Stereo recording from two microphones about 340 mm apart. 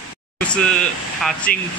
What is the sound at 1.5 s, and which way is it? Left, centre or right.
Speech, left.